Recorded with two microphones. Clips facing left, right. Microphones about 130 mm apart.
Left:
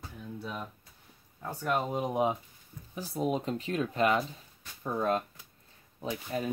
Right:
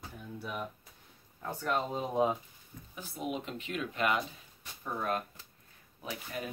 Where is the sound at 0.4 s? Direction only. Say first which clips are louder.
Right 1 dB; 10° right (ahead or behind).